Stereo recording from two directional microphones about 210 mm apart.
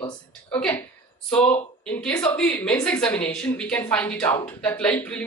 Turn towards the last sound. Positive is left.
turn(degrees=5)  # may be behind; listen again after turning